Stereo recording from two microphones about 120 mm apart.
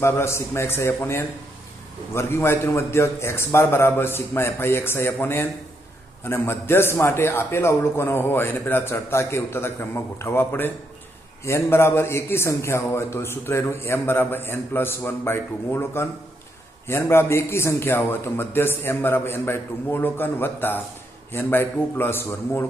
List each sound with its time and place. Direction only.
0.0 s a man's voice: 20° left (ahead or behind)